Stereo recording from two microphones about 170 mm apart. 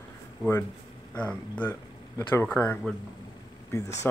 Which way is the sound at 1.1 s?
10° left (ahead or behind).